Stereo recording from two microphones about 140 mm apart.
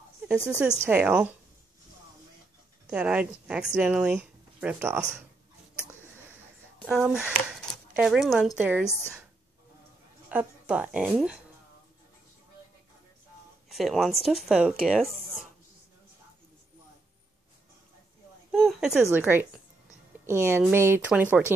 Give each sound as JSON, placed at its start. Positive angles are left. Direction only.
{"t": 0.8, "sound": "speech", "side_deg": -10}
{"t": 2.9, "sound": "speech", "side_deg": -10}
{"t": 6.9, "sound": "speech", "side_deg": -5}
{"t": 10.3, "sound": "speech", "side_deg": -10}
{"t": 13.7, "sound": "speech", "side_deg": 0}
{"t": 18.5, "sound": "speech", "side_deg": 0}
{"t": 19.1, "sound": "a woman's voice", "side_deg": -15}